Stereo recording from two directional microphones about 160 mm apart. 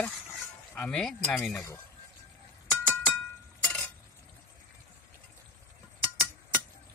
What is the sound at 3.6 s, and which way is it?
Chink, 5° left (ahead or behind).